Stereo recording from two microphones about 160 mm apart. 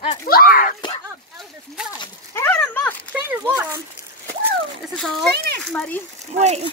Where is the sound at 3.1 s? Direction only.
10° right (ahead or behind).